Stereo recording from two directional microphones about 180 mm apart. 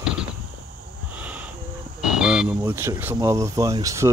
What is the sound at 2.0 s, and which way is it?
Speech, 5° right (ahead or behind).